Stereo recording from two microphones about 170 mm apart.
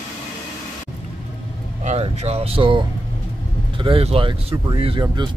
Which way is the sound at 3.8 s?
35° right (ahead or behind).